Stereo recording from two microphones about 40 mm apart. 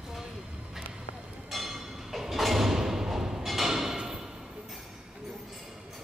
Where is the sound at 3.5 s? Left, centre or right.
Centre.